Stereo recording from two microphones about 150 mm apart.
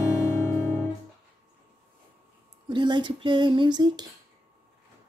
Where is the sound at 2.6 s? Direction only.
30° right (ahead or behind).